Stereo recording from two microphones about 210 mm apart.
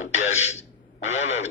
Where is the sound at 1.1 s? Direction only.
65° left (ahead or behind).